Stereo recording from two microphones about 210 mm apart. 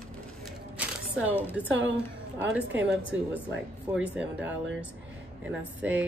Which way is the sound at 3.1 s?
65° right (ahead or behind).